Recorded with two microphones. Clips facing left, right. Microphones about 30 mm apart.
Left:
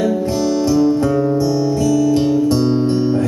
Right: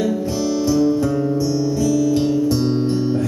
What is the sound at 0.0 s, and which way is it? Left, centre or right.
Music, centre.